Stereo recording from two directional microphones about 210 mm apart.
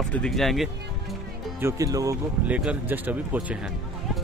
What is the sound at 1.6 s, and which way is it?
Speech, 15° right (ahead or behind).